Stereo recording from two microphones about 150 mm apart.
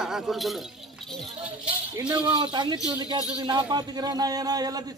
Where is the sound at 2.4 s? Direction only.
30° right (ahead or behind).